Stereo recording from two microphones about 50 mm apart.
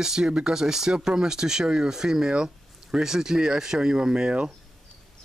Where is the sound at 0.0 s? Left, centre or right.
Centre.